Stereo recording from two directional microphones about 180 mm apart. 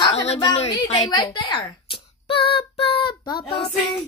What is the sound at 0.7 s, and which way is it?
Speech, 20° left (ahead or behind).